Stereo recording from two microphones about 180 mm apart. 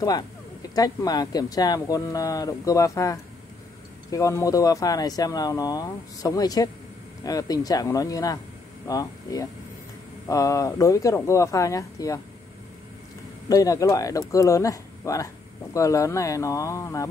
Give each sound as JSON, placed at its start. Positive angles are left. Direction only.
{"t": 0.7, "sound": "speech", "side_deg": 20}
{"t": 13.5, "sound": "speech", "side_deg": 20}